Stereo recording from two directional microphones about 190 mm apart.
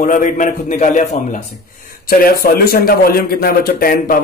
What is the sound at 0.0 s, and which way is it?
A man's voice, 45° left (ahead or behind).